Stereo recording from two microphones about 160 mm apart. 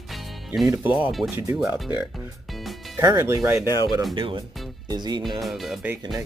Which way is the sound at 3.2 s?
15° right (ahead or behind).